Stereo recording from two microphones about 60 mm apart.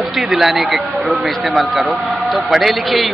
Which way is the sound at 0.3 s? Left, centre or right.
Centre.